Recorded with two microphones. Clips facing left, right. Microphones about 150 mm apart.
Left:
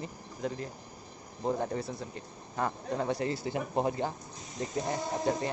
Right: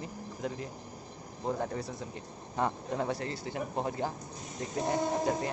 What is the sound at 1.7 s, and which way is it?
Speech, 15° right (ahead or behind).